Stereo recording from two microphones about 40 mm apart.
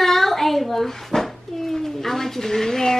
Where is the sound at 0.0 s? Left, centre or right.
Centre.